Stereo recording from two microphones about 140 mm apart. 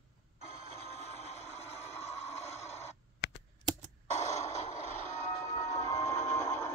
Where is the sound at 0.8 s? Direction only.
50° left (ahead or behind).